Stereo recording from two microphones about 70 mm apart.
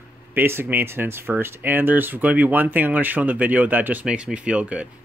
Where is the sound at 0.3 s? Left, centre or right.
Right.